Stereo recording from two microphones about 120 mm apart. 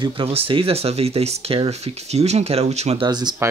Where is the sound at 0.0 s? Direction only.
50° right (ahead or behind).